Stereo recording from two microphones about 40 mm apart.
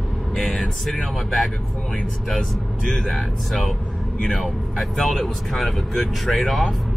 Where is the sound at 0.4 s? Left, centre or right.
Centre.